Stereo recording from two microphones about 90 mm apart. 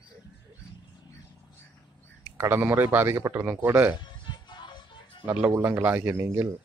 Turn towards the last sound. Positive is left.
turn(degrees=-25)  # may be behind; listen again after turning